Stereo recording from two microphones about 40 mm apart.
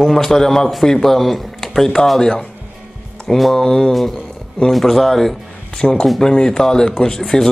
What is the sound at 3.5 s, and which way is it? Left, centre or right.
A man's voice, centre.